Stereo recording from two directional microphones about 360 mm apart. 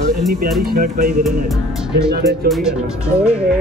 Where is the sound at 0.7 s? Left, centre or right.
Right.